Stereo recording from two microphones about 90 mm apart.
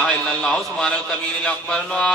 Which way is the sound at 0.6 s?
10° left (ahead or behind).